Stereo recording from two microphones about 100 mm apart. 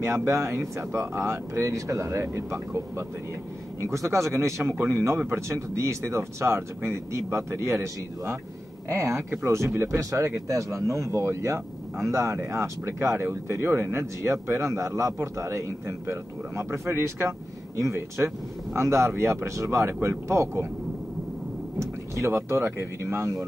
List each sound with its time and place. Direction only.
0.0 s speech: 25° right (ahead or behind)
21.7 s speech: 30° right (ahead or behind)